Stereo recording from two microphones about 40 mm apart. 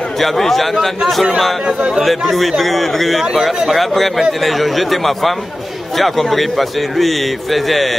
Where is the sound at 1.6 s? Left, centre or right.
Right.